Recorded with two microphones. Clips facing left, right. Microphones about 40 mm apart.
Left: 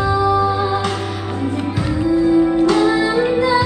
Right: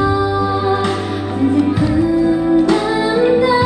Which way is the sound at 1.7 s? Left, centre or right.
Right.